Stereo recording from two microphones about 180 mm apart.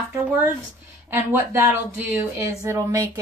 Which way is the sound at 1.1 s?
15° right (ahead or behind).